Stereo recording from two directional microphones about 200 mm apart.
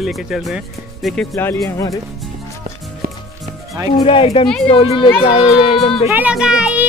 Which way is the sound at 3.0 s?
45° right (ahead or behind).